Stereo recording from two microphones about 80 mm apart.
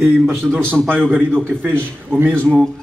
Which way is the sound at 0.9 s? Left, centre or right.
Right.